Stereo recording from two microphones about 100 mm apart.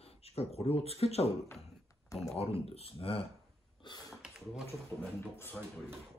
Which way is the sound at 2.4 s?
80° left.